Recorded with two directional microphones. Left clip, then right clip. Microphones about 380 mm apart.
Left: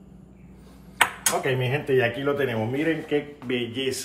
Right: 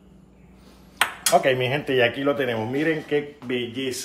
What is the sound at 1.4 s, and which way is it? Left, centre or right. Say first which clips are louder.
A man's voice: right 4 dB; centre.